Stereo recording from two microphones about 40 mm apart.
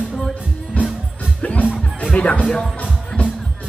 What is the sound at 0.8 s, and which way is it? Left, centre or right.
Music, left.